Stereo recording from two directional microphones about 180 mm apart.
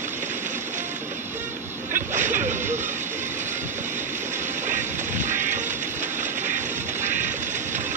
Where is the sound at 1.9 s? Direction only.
45° right (ahead or behind).